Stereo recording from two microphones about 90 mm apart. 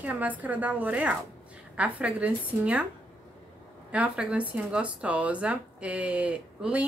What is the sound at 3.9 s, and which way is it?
Speech, 15° right (ahead or behind).